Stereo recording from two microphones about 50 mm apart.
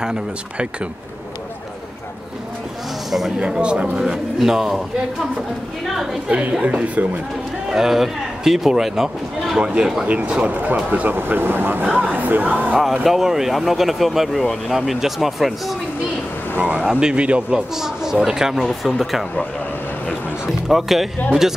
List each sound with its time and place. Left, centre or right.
0.0 s speech: centre
3.1 s speech: centre
3.3 s speech: centre
4.0 s speech: centre
6.6 s speech: right
7.7 s speech: centre
10.0 s speech: right
11.1 s speech: right
12.9 s speech: centre
14.8 s speech: centre
16.5 s speech: right
17.7 s speech: centre
20.6 s speech: centre